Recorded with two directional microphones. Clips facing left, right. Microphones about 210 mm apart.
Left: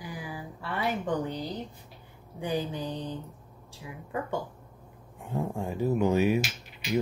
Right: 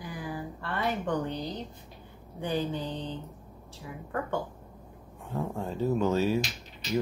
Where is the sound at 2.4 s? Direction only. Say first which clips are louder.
Even; 15° left (ahead or behind).